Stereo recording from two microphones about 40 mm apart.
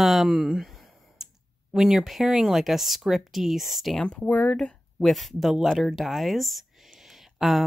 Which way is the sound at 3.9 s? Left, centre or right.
Centre.